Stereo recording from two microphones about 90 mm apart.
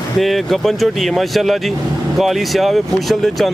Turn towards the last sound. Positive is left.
turn(degrees=5)  # may be behind; listen again after turning